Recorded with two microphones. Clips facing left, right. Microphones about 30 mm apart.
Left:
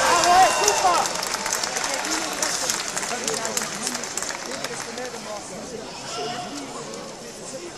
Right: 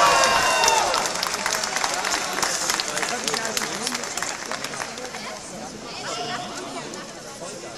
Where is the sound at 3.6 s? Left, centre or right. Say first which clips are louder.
Right 2 dB; right.